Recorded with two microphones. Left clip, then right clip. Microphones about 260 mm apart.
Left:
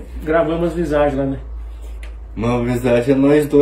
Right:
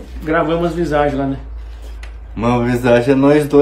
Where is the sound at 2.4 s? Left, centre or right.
Centre.